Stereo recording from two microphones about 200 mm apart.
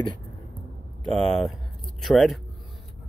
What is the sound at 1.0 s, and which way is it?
Speech, centre (ahead or behind).